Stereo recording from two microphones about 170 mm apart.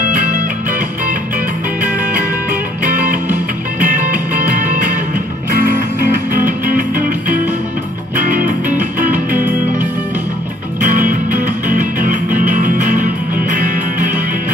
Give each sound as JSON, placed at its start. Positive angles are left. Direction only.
{"t": 0.7, "sound": "music", "side_deg": -50}
{"t": 2.8, "sound": "music", "side_deg": -50}
{"t": 6.4, "sound": "music", "side_deg": -55}
{"t": 8.2, "sound": "music", "side_deg": -55}
{"t": 10.8, "sound": "music", "side_deg": -50}